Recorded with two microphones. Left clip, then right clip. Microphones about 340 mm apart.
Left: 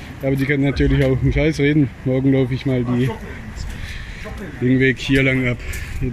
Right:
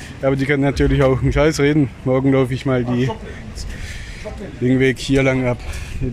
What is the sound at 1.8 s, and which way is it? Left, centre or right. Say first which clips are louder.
Speech: right 2 dB; right.